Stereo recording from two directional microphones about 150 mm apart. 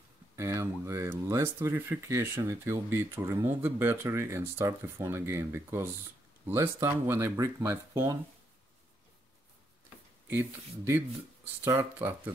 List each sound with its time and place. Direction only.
0.4 s speech: 20° right (ahead or behind)
11.6 s speech: 20° right (ahead or behind)